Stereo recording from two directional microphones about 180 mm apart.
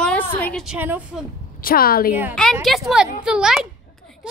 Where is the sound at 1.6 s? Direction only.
55° left (ahead or behind).